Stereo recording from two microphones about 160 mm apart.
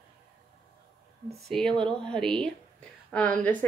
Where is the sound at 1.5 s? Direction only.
5° left (ahead or behind).